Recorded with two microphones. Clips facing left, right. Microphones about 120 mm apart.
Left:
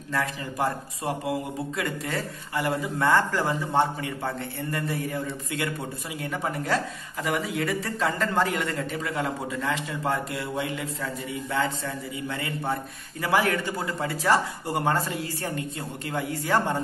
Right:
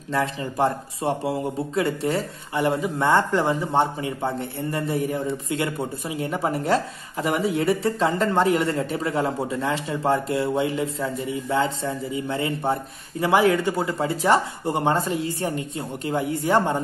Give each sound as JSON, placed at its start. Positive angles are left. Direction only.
{"t": 0.1, "sound": "speech", "side_deg": -25}